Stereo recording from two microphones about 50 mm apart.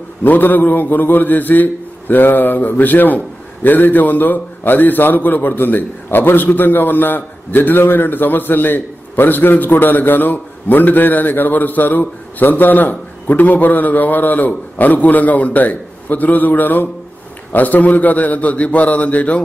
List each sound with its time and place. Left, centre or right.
0.2 s a man's voice: left